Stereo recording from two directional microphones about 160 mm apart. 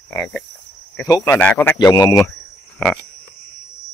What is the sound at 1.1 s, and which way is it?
Speech, 20° left (ahead or behind).